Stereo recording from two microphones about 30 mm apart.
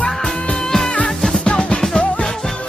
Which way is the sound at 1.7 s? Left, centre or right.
Left.